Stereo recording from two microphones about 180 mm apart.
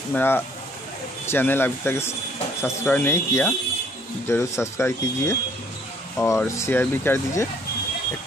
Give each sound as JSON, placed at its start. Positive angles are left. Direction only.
{"t": 0.1, "sound": "speech", "side_deg": 10}